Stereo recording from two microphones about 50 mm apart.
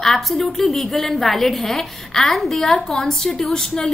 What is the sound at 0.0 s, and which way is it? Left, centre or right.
A woman's voice, centre.